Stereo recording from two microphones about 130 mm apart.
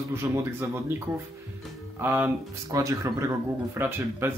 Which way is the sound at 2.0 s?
20° right (ahead or behind).